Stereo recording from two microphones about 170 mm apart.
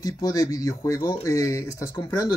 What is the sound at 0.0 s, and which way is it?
Speech, 20° left (ahead or behind).